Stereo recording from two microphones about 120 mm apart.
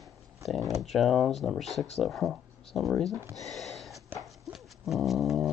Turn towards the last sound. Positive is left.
turn(degrees=0)  # may be behind; listen again after turning